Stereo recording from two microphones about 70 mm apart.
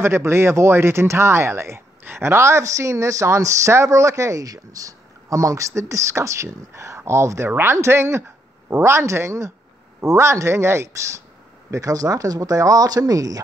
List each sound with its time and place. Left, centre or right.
0.0 s speech: right
11.7 s speech: right